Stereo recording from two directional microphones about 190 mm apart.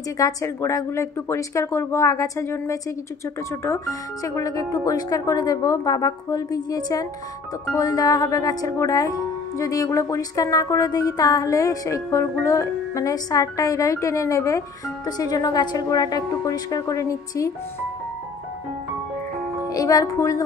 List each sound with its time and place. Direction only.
0.2 s a woman's voice: 15° left (ahead or behind)
19.7 s speech: 20° left (ahead or behind)